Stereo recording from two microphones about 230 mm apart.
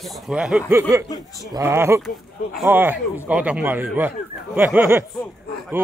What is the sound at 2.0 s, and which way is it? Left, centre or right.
Speech, centre.